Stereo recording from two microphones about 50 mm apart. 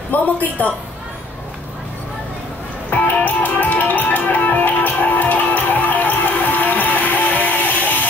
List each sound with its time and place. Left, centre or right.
0.1 s a woman's voice: left
3.2 s music: left